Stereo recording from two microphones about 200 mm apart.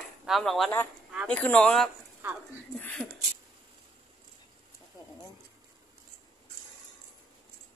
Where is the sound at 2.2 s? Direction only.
10° right (ahead or behind).